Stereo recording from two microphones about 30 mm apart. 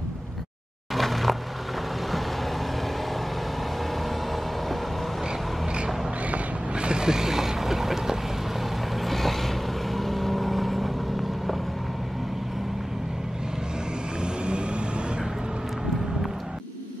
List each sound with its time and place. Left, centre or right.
0.9 s a sound: centre
6.7 s vehicle: right
7.1 s boat: centre
9.0 s vehicle: centre
14.2 s vehicle: right